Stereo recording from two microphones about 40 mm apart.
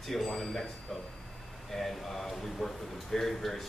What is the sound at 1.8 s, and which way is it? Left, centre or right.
A man's voice, centre.